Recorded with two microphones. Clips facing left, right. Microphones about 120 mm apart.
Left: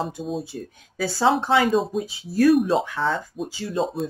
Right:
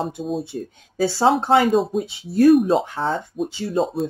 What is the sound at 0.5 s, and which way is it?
Speech, 35° right (ahead or behind).